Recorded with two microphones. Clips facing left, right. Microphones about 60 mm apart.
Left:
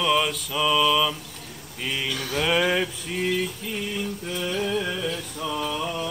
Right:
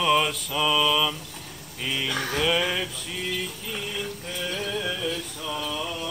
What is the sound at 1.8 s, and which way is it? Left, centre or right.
Speech, centre.